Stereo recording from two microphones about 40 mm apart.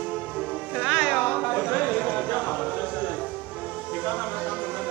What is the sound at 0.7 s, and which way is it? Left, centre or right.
Music, centre.